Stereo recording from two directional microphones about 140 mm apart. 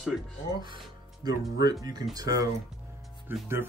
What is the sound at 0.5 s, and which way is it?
Speech, 35° right (ahead or behind).